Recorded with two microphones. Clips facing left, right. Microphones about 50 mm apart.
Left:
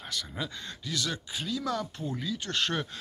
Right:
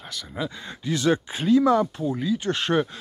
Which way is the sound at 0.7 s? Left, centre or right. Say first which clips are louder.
Right 15 dB; right.